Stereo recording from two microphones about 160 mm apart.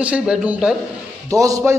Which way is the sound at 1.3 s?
20° right (ahead or behind).